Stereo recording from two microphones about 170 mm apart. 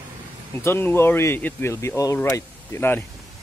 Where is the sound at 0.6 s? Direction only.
15° left (ahead or behind).